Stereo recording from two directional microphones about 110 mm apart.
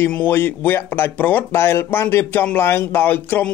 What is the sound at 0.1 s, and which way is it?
Speech, 15° left (ahead or behind).